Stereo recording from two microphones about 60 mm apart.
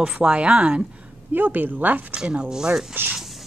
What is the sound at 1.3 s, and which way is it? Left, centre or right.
Speech, right.